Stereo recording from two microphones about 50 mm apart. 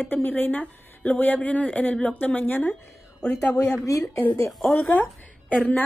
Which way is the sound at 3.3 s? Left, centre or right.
Left.